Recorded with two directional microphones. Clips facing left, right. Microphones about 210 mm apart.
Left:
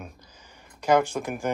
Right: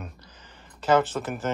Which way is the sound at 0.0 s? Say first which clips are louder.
Right 1 dB; 10° left (ahead or behind).